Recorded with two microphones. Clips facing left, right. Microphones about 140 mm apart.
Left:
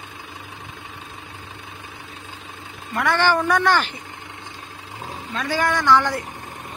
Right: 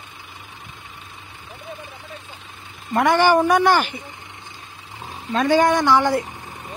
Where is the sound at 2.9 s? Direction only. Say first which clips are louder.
Right 4 dB; 20° right (ahead or behind).